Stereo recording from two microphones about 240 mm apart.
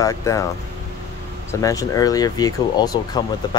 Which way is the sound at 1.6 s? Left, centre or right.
Centre.